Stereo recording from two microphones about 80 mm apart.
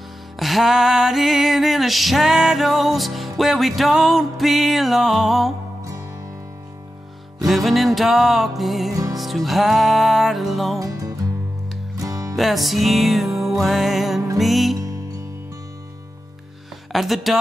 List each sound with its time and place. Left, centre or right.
0.4 s music: centre
7.4 s music: centre
10.8 s music: right
12.4 s music: centre
16.9 s music: centre